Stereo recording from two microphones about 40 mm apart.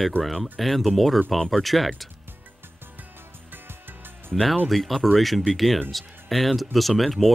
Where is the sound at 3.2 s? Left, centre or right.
Right.